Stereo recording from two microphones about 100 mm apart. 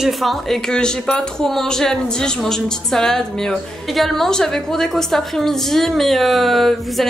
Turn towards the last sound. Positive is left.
turn(degrees=0)  # may be behind; listen again after turning